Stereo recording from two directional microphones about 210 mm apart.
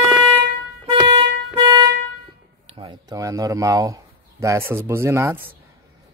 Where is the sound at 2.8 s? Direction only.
20° right (ahead or behind).